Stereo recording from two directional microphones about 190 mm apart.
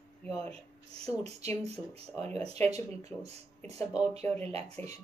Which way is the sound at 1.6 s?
35° right (ahead or behind).